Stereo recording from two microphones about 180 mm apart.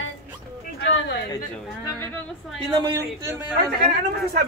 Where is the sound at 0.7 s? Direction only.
70° left (ahead or behind).